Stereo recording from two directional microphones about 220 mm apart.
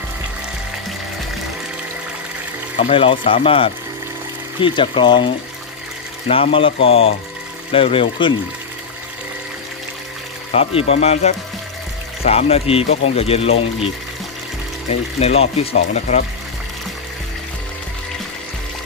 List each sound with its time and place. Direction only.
2.8 s speech: 25° left (ahead or behind)
10.5 s speech: 25° left (ahead or behind)
14.9 s speech: 30° left (ahead or behind)